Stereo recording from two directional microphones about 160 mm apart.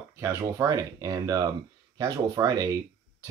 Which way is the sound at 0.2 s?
20° right (ahead or behind).